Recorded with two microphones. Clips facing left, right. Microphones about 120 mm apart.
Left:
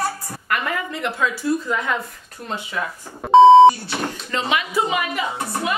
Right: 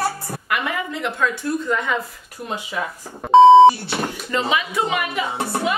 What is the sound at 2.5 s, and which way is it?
Speech, 10° right (ahead or behind).